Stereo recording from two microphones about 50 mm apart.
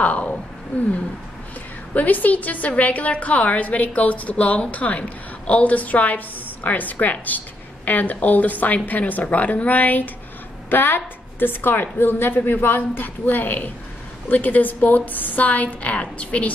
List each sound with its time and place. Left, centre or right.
0.0 s a woman's voice: left
2.0 s a woman's voice: left
10.7 s a woman's voice: left